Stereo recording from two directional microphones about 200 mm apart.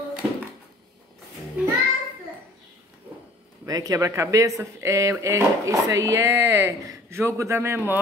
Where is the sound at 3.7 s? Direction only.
20° right (ahead or behind).